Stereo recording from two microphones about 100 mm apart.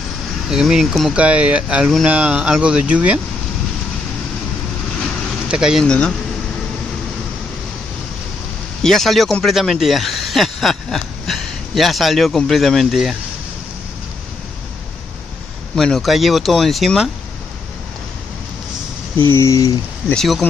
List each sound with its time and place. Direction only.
0.5 s speech: 5° right (ahead or behind)
1.1 s speech: 10° right (ahead or behind)
5.5 s speech: 5° right (ahead or behind)
5.9 s speech: 10° left (ahead or behind)
8.8 s speech: centre (ahead or behind)
15.7 s speech: 5° left (ahead or behind)
19.3 s a sound: 30° left (ahead or behind)